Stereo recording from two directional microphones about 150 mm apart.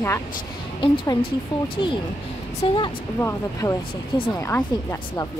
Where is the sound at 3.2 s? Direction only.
20° left (ahead or behind).